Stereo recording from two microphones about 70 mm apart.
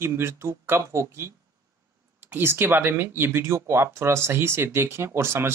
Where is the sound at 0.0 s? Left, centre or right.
Right.